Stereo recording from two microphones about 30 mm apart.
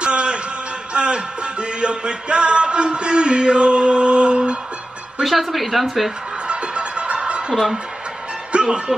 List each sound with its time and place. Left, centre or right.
0.0 s music: right
5.2 s a woman's voice: centre
6.4 s music: right